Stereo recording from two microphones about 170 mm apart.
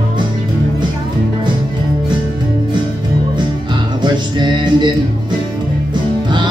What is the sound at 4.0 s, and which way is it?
Music, 25° right (ahead or behind).